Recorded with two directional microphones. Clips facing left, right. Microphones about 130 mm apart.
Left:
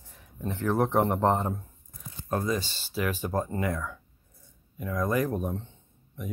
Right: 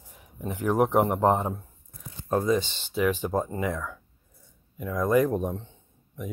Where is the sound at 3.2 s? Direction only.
15° right (ahead or behind).